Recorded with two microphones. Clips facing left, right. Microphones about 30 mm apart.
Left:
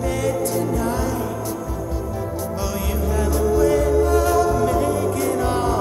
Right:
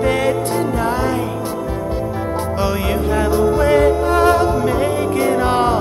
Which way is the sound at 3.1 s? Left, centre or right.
Right.